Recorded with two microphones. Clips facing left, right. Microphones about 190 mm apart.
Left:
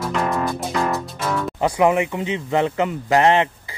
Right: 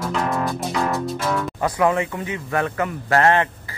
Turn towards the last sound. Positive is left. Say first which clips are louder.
# left 2 dB
turn(degrees=15)  # may be behind; listen again after turning